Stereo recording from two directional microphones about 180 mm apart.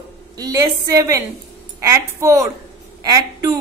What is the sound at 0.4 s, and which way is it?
A woman's voice, 15° right (ahead or behind).